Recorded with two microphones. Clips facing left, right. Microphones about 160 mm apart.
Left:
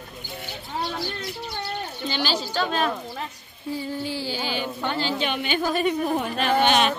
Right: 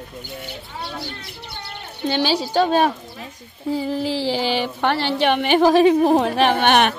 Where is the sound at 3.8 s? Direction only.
90° right.